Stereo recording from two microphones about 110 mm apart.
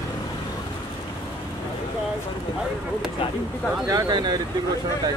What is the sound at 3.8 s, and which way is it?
Speech, 40° right (ahead or behind).